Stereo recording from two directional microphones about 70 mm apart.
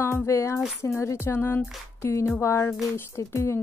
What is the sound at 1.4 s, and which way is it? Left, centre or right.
Speech, left.